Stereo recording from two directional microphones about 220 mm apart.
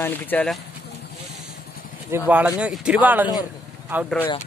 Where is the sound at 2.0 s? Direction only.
10° right (ahead or behind).